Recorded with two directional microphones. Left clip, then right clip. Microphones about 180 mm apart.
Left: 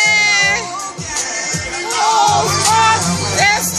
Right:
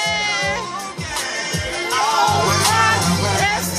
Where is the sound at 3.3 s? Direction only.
30° left (ahead or behind).